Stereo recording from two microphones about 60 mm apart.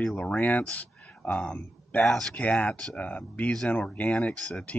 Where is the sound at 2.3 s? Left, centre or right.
Left.